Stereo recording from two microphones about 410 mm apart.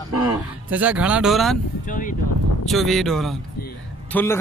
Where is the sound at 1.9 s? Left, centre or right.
Centre.